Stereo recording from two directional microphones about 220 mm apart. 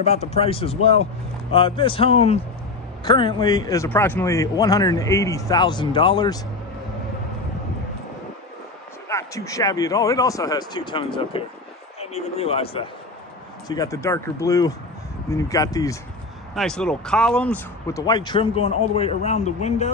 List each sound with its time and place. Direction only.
0.0 s speech: 30° left (ahead or behind)
9.1 s speech: 15° left (ahead or behind)
13.7 s speech: 15° left (ahead or behind)
16.5 s speech: 5° left (ahead or behind); by 19.9 s 30° left (ahead or behind)